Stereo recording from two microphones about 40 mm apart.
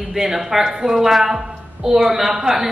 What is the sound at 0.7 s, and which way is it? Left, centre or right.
Speech, right.